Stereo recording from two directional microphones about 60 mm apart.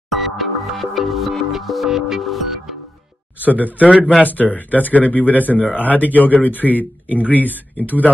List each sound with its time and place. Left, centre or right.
0.1 s music: centre
3.3 s speech: right
4.2 s speech: left